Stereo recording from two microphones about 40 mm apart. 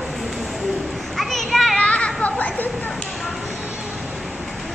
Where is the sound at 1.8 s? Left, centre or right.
Left.